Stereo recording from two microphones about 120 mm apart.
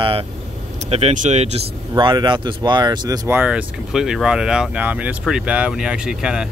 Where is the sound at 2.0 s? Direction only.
40° right (ahead or behind).